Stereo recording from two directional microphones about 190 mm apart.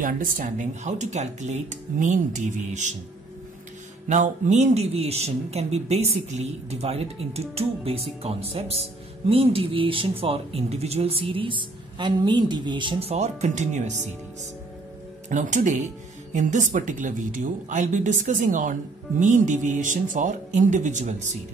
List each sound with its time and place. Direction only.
0.0 s speech: 45° right (ahead or behind)
4.1 s speech: 40° right (ahead or behind)
15.2 s speech: 40° right (ahead or behind)